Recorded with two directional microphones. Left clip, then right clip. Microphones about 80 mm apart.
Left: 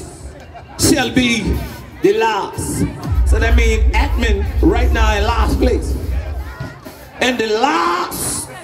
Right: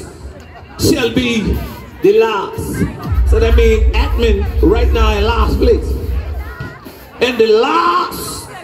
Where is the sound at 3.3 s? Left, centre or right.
Left.